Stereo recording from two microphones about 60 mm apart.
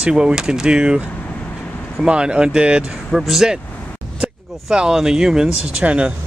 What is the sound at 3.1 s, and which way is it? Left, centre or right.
Speech, centre.